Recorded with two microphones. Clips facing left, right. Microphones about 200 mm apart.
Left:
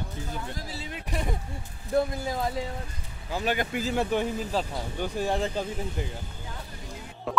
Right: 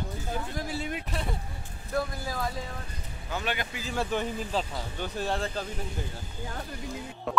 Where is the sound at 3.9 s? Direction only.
15° left (ahead or behind).